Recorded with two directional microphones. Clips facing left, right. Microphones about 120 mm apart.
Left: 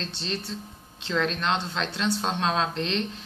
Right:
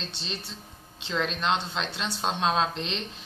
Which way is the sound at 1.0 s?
10° right (ahead or behind).